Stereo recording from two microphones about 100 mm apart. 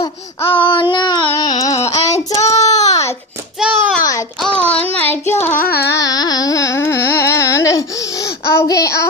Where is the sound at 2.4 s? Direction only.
90° left.